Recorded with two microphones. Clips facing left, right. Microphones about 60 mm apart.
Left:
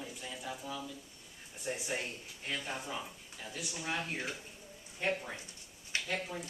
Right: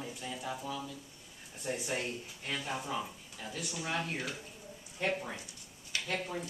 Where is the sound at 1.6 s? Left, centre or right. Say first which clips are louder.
Right 2 dB; centre.